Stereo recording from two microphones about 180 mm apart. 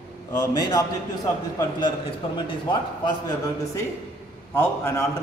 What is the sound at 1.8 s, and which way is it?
A man's voice, 25° left (ahead or behind).